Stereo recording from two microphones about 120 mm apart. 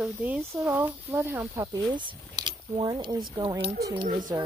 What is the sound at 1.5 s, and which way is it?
Speech, 30° right (ahead or behind).